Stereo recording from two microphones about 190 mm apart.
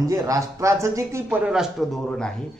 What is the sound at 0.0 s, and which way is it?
A man's voice, 15° right (ahead or behind).